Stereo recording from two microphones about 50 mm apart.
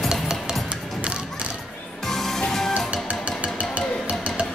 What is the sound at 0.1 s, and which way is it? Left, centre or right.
Music, centre.